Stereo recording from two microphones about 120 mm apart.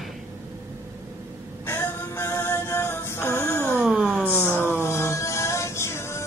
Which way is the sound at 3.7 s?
Centre (ahead or behind).